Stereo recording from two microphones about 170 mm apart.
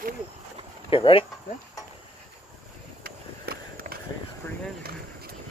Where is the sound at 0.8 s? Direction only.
30° left (ahead or behind).